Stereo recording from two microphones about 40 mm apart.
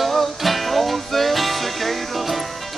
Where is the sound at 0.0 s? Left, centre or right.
Centre.